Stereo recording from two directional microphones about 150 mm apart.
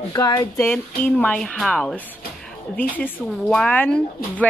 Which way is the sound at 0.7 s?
5° left (ahead or behind).